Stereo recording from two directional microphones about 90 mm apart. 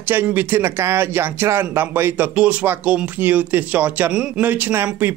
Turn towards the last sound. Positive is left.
turn(degrees=-25)  # may be behind; listen again after turning